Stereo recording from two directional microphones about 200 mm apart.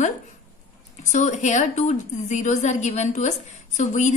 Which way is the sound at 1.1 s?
35° left (ahead or behind).